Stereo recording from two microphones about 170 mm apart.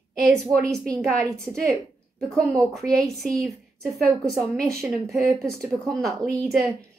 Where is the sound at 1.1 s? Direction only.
20° right (ahead or behind).